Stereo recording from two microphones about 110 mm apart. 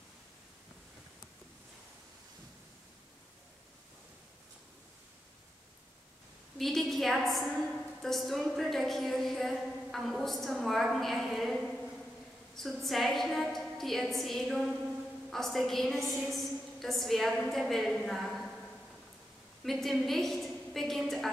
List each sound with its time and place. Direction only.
6.6 s a woman's voice: 5° left (ahead or behind)
19.6 s a woman's voice: centre (ahead or behind)